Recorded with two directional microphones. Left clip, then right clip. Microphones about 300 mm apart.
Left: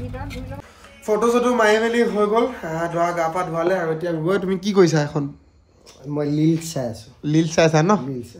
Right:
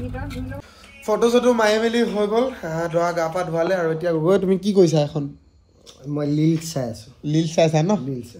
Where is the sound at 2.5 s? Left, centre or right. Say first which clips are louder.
Right 1 dB; centre.